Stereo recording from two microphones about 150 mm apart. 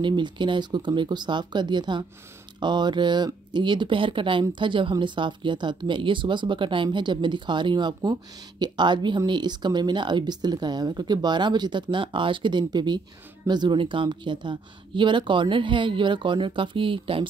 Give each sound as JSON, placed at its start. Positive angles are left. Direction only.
{"t": 0.0, "sound": "speech", "side_deg": -30}